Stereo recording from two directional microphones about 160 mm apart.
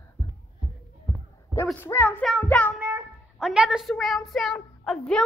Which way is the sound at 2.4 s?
10° left (ahead or behind).